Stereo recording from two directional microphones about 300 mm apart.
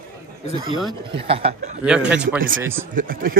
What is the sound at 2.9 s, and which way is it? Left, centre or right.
Speech, right.